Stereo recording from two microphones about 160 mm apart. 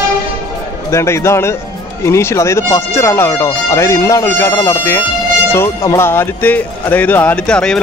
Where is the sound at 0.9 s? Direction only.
15° left (ahead or behind).